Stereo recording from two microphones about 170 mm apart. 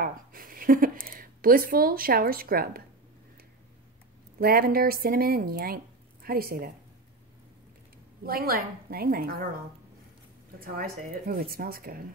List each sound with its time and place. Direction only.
0.0 s speech: 55° right (ahead or behind)
4.4 s speech: 60° right (ahead or behind)
8.2 s speech: 60° right (ahead or behind)
10.6 s speech: 60° right (ahead or behind)